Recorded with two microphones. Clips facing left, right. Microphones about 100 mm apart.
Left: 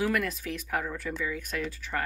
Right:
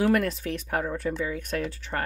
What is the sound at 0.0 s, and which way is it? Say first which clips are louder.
Speech: right 5 dB; 35° right (ahead or behind).